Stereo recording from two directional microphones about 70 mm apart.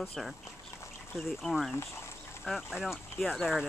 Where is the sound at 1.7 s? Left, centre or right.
Left.